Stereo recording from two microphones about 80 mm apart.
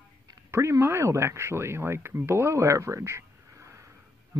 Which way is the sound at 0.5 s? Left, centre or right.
Right.